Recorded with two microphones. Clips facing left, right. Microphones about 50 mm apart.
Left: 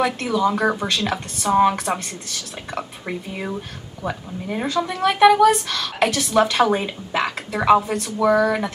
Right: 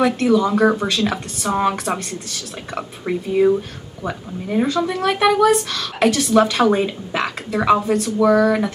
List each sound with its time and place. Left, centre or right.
0.0 s speech: centre